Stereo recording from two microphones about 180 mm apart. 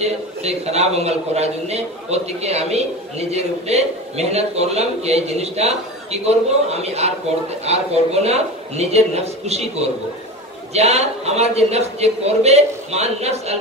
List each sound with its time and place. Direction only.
0.0 s a man's voice: 35° right (ahead or behind)